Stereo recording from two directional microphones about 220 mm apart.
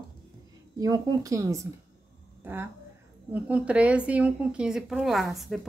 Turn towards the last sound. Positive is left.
turn(degrees=0)  # may be behind; listen again after turning